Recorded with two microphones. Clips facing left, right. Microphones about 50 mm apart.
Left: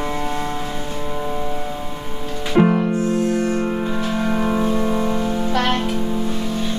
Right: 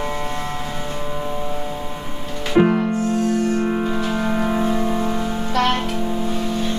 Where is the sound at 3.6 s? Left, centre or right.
Centre.